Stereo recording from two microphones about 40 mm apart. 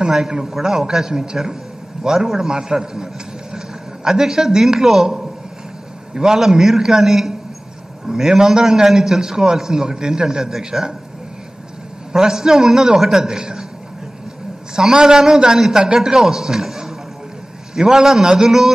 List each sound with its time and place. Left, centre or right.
0.6 s a man's voice: centre
5.0 s a sound: centre
6.1 s a man's voice: centre
12.1 s a man's voice: centre
14.8 s a man's voice: centre